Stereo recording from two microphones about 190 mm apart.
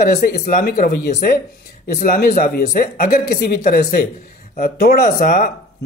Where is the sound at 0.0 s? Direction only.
50° left (ahead or behind).